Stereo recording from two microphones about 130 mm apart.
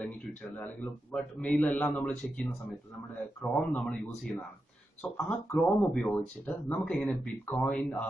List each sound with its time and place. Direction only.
0.0 s speech: 10° left (ahead or behind)
3.5 s speech: 5° left (ahead or behind)